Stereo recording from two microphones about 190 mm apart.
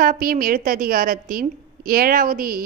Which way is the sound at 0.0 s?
50° right (ahead or behind).